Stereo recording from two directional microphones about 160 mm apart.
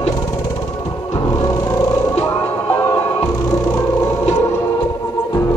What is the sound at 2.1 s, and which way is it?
Music, 35° left (ahead or behind).